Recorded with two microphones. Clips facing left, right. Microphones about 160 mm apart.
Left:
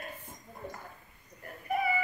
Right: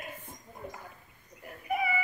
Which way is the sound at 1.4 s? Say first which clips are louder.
Even; 5° right (ahead or behind).